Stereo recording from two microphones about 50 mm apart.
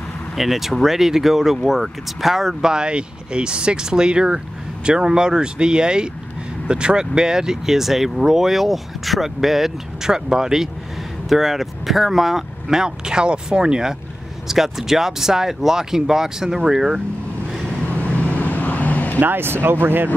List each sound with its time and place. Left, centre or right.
0.4 s speech: centre
17.8 s vehicle: left
19.1 s speech: right